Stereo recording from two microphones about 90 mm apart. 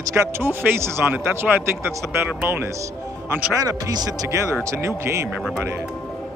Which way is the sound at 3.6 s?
45° right (ahead or behind).